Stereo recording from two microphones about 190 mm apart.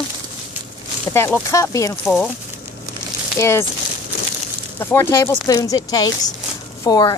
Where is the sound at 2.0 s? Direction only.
Centre (ahead or behind).